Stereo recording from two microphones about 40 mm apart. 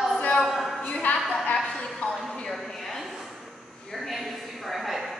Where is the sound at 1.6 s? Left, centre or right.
Centre.